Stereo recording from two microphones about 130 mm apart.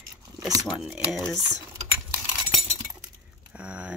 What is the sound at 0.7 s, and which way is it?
Speech, 5° right (ahead or behind).